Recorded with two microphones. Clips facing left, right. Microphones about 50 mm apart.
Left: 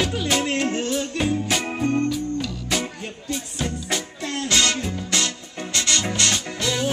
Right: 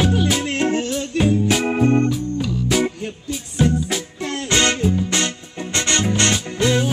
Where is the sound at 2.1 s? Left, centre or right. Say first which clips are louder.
Right 3 dB; centre.